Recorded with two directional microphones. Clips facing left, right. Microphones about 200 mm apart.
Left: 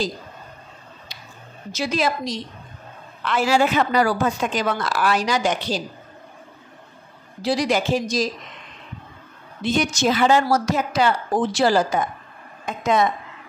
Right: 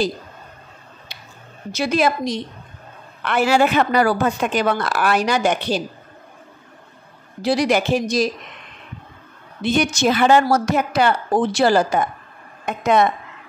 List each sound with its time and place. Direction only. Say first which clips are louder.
1.7 s a woman's voice: right 4 dB; 60° right (ahead or behind)
7.4 s a woman's voice: right 3 dB; 65° right (ahead or behind)
9.6 s a woman's voice: right 2 dB; 65° right (ahead or behind)